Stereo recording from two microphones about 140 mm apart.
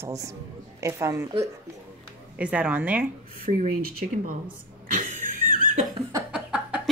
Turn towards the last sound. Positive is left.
turn(degrees=-5)  # may be behind; listen again after turning